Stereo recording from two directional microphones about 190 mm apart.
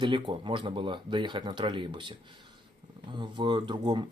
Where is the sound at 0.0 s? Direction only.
25° right (ahead or behind).